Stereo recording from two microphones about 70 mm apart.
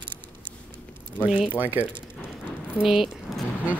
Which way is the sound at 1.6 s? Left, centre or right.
Right.